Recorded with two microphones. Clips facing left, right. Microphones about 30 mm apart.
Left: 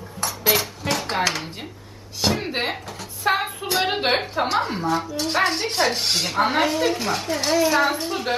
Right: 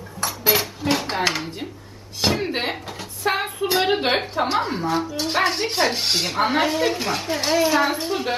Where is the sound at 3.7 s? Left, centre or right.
Centre.